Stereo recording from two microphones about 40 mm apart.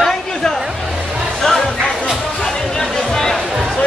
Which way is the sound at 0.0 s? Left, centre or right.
Centre.